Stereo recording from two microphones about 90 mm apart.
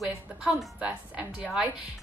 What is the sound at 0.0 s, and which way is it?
A woman's voice, 5° right (ahead or behind).